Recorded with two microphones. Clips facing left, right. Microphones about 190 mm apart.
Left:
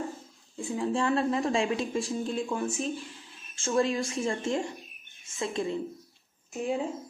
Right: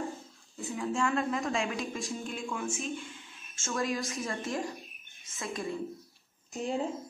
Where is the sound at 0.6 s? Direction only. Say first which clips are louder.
Left 3 dB; 30° left (ahead or behind).